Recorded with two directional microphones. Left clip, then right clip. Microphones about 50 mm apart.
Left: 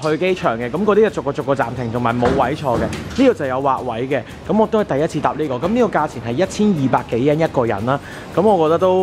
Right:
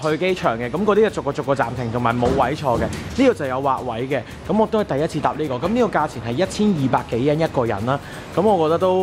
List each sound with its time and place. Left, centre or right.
0.1 s speech: centre
3.4 s speech: centre